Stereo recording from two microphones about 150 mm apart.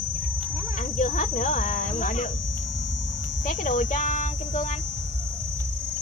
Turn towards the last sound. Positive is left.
turn(degrees=55)  # may be behind; listen again after turning